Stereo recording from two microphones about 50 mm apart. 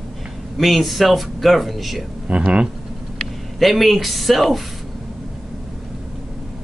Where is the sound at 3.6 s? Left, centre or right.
Centre.